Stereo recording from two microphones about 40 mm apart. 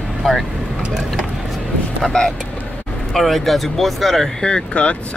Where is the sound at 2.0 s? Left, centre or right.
Centre.